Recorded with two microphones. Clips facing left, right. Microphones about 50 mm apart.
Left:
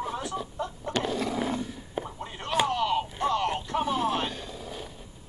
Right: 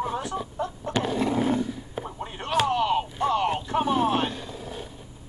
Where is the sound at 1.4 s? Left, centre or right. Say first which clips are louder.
Right 6 dB; centre.